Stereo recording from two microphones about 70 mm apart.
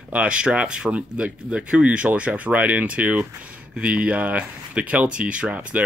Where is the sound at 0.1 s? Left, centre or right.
Centre.